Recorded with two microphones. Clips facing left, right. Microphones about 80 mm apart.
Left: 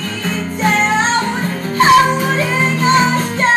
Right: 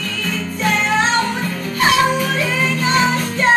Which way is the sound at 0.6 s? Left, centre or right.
Left.